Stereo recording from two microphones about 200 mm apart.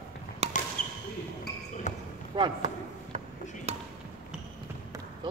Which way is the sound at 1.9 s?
35° left (ahead or behind).